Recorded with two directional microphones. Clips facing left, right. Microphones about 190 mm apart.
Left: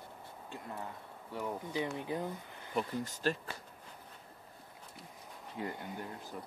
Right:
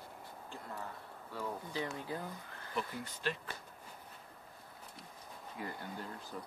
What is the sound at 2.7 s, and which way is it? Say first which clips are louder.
Speech: left 5 dB; 40° left (ahead or behind).